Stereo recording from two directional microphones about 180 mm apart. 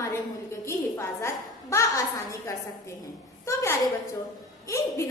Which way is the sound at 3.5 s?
15° left (ahead or behind).